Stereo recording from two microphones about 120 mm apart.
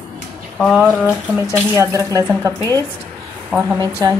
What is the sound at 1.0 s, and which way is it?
Speech, 20° right (ahead or behind).